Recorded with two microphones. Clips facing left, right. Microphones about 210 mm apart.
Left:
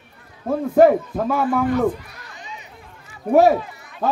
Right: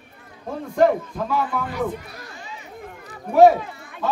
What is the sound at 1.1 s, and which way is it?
Speech, 50° left (ahead or behind).